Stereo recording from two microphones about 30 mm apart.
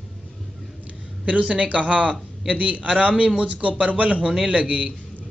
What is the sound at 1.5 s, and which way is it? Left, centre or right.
Speech, right.